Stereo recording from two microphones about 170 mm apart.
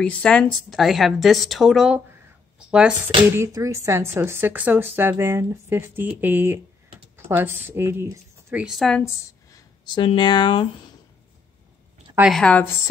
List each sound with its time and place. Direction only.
0.0 s a woman's voice: 5° left (ahead or behind)
3.3 s speech: 15° right (ahead or behind)
8.6 s a woman's voice: centre (ahead or behind)
9.0 s speech: 25° left (ahead or behind)
12.2 s a woman's voice: centre (ahead or behind)